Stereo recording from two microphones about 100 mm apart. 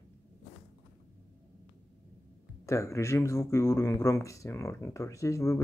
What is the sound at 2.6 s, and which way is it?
Speech, 30° left (ahead or behind).